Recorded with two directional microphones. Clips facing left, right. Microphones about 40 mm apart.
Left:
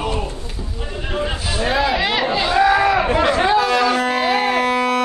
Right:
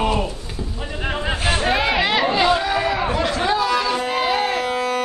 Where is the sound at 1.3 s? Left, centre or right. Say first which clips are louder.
Right 2 dB; right.